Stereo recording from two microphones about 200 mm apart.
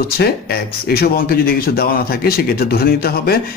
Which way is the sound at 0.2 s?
50° left (ahead or behind).